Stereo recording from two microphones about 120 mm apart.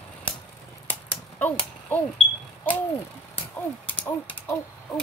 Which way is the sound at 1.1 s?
15° left (ahead or behind).